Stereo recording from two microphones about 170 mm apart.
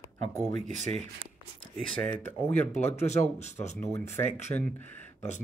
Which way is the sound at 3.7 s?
15° left (ahead or behind).